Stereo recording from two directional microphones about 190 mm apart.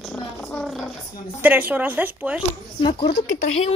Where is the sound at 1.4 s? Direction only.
10° right (ahead or behind).